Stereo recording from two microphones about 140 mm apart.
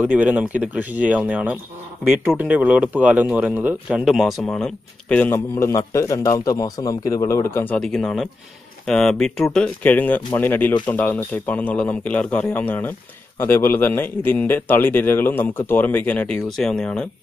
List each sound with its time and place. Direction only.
0.0 s a man's voice: 10° right (ahead or behind); by 7.7 s 20° left (ahead or behind)
7.7 s speech: 5° left (ahead or behind)